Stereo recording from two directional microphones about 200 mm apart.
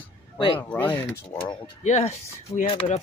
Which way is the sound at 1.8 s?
35° left (ahead or behind).